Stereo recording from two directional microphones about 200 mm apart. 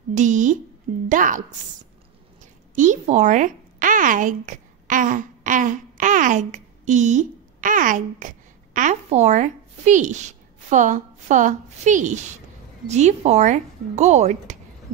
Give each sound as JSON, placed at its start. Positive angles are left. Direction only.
{"t": 0.1, "sound": "a woman's voice", "side_deg": -40}
{"t": 2.7, "sound": "speech", "side_deg": -40}